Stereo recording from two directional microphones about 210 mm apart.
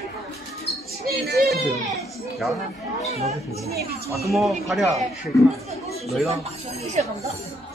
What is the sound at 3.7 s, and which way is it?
Speech, 50° right (ahead or behind).